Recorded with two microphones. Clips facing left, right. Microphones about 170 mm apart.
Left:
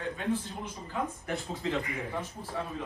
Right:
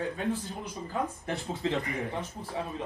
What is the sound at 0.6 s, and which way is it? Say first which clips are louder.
Speech: right 2 dB; 35° right (ahead or behind).